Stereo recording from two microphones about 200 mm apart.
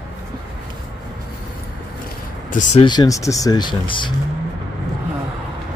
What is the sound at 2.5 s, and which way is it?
Speech, 40° left (ahead or behind).